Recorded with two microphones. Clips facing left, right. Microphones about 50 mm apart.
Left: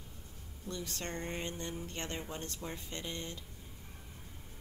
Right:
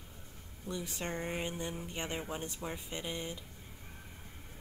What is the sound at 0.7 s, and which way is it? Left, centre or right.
Speech, centre.